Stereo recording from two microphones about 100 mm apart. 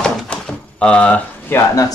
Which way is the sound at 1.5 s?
30° left (ahead or behind).